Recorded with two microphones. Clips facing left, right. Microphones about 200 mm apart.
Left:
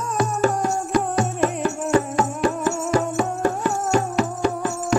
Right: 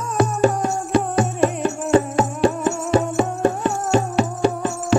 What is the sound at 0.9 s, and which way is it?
Music, 25° right (ahead or behind).